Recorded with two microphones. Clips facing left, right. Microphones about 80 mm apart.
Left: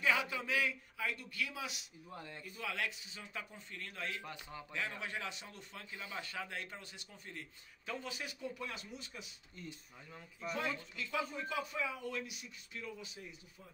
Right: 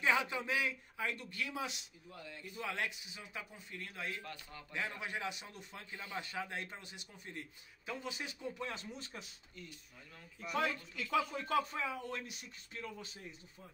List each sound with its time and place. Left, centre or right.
0.0 s a sound: right
2.0 s speech: left
2.5 s a man's voice: right
4.2 s a man's voice: centre
4.7 s a man's voice: centre; by 9.2 s right
10.5 s speech: right
11.4 s speech: right
11.8 s speech: right